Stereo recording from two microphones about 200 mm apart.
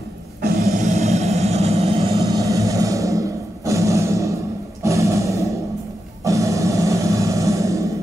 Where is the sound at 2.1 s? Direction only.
15° right (ahead or behind).